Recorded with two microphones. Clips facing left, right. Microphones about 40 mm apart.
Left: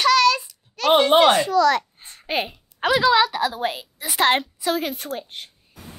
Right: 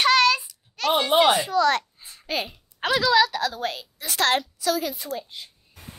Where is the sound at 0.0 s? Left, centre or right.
Right.